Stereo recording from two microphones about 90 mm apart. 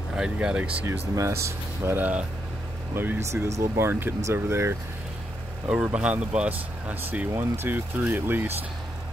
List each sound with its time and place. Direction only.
0.1 s speech: 10° right (ahead or behind)
1.9 s speech: 20° right (ahead or behind)
5.7 s speech: 15° right (ahead or behind)